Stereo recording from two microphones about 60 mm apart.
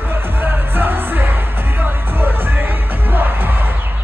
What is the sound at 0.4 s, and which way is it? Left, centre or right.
Music, right.